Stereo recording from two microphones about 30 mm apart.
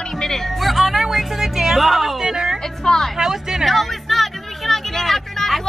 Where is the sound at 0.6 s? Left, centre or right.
Centre.